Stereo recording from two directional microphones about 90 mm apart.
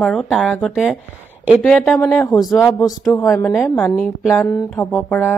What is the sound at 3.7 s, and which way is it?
Speech, 20° left (ahead or behind).